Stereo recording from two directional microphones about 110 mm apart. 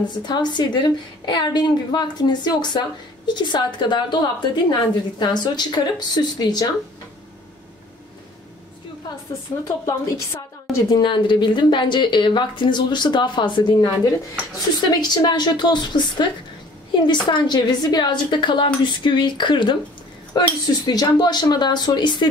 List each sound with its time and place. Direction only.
0.1 s a woman's voice: 40° left (ahead or behind)
9.7 s a woman's voice: 25° left (ahead or behind)
10.9 s a woman's voice: 45° left (ahead or behind)